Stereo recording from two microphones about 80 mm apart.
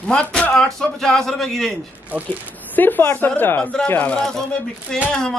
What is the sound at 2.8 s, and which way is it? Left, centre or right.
Speech, left.